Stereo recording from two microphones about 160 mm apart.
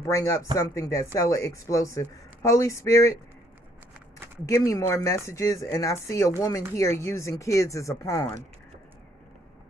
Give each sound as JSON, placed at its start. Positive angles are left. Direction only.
{"t": 0.0, "sound": "speech", "side_deg": 20}
{"t": 4.5, "sound": "speech", "side_deg": 20}